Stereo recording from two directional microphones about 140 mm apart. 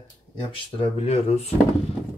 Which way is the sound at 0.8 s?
45° left (ahead or behind).